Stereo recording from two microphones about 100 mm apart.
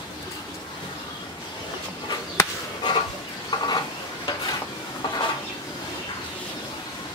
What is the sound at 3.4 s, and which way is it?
Stir, 45° left (ahead or behind).